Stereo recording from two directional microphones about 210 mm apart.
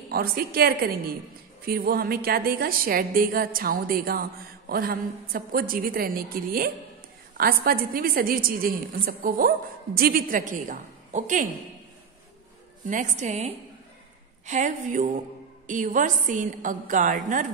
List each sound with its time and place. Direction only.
0.1 s a woman's voice: 45° right (ahead or behind)
12.8 s a woman's voice: 35° right (ahead or behind)